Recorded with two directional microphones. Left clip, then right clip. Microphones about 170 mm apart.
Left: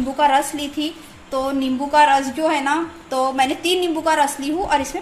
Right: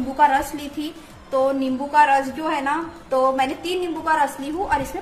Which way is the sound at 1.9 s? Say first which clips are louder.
Left 2 dB; 40° left (ahead or behind).